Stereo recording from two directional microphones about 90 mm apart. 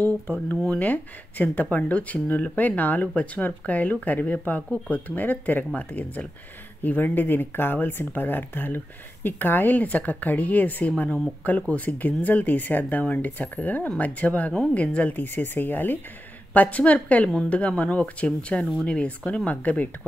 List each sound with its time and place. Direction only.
0.6 s speech: 15° left (ahead or behind)